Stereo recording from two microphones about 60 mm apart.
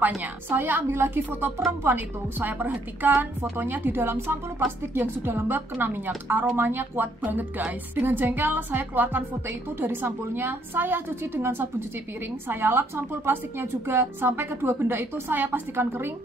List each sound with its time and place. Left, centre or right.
0.2 s a woman's voice: right